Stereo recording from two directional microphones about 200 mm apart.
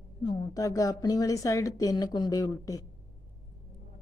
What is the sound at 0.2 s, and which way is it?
A woman's voice, 20° left (ahead or behind).